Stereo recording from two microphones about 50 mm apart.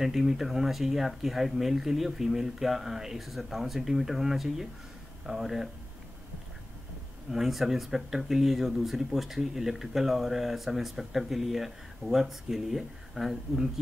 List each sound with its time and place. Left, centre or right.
0.0 s speech: centre
7.2 s speech: centre